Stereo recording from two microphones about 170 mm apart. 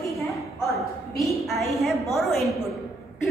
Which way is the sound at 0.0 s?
20° left (ahead or behind).